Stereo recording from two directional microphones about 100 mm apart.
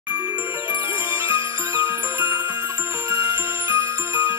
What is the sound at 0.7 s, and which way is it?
Music, 25° right (ahead or behind).